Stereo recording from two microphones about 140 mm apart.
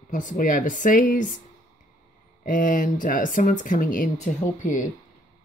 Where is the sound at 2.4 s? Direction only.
70° left (ahead or behind).